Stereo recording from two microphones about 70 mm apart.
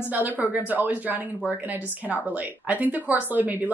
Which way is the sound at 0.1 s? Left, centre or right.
Right.